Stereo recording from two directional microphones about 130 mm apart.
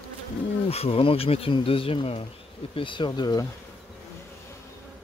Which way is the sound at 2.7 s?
40° left (ahead or behind).